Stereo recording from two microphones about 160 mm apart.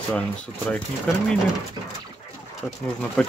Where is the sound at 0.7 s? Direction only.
10° left (ahead or behind).